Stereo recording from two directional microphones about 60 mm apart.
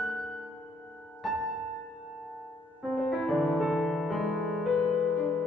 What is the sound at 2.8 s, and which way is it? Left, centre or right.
Music, centre.